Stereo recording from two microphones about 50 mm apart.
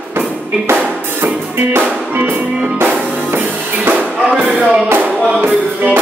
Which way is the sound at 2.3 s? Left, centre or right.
Right.